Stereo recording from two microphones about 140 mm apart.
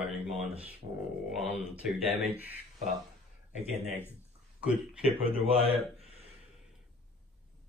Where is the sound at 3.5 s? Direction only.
50° right (ahead or behind).